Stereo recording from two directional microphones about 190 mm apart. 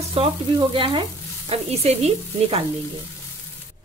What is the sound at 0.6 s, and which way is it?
Frying, 25° right (ahead or behind).